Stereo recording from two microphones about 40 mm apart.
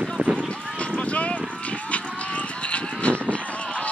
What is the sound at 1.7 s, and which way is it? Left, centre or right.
Run, left.